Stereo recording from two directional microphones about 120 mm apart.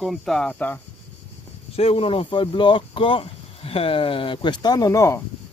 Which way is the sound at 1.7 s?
55° left (ahead or behind).